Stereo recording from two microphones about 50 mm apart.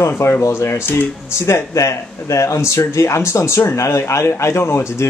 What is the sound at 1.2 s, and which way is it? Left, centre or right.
Speech, left.